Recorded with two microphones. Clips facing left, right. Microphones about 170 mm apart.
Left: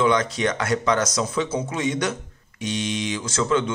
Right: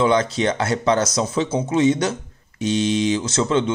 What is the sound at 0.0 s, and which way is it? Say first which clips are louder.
Speech: right 3 dB; 30° right (ahead or behind).